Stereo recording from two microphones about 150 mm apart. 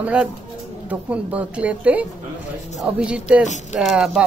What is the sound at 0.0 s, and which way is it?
A woman's voice, 5° right (ahead or behind).